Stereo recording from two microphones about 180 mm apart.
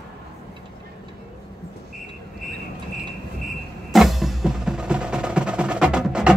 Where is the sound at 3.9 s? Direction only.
Centre (ahead or behind).